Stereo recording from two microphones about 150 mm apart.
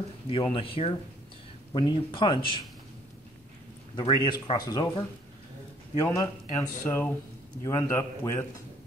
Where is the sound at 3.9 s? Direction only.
30° left (ahead or behind).